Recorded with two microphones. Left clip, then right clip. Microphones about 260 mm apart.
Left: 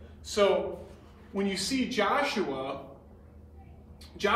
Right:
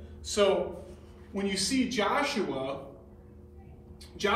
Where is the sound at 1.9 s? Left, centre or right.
Centre.